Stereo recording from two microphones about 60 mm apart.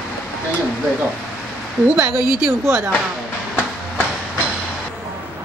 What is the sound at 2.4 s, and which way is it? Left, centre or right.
Speech, right.